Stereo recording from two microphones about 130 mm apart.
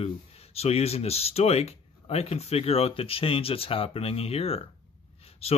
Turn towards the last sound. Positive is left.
turn(degrees=50)  # may be behind; listen again after turning